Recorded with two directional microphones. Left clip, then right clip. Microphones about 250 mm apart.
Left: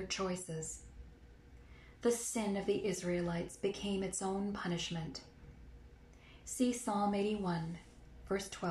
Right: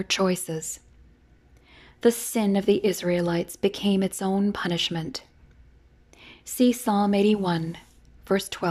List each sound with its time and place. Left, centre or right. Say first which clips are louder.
0.1 s a woman's voice: right 17 dB; right
2.0 s a woman's voice: right 12 dB; right
6.4 s a woman's voice: right 13 dB; right